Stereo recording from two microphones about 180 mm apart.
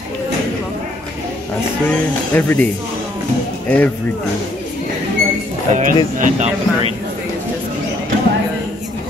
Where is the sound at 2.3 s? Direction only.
10° left (ahead or behind).